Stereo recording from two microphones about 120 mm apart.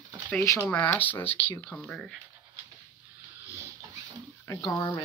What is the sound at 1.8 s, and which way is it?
Speech, 5° left (ahead or behind).